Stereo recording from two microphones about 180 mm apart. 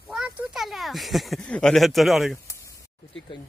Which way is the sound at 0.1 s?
5° right (ahead or behind).